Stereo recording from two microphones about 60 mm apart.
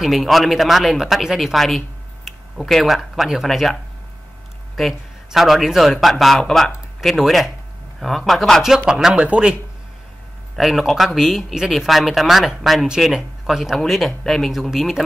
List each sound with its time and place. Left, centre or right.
0.0 s speech: centre
8.6 s speech: centre
10.5 s speech: centre